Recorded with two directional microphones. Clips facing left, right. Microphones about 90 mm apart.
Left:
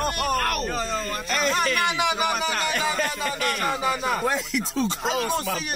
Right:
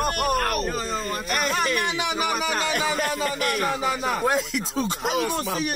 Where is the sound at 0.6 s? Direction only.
5° right (ahead or behind).